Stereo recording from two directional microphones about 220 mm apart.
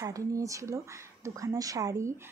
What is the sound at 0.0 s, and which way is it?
A woman's voice, 15° right (ahead or behind).